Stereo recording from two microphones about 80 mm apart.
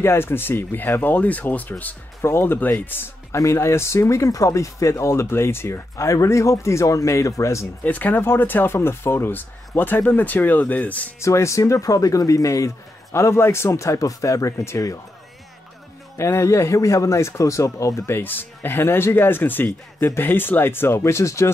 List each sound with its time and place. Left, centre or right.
0.0 s speech: left
7.8 s speech: left
11.1 s speech: left
16.2 s speech: left
18.0 s speech: left